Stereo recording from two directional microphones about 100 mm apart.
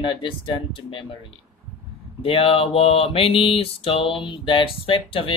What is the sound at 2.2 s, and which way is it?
Speech, 65° left (ahead or behind).